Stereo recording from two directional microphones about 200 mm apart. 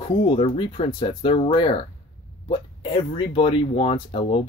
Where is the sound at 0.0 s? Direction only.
25° left (ahead or behind).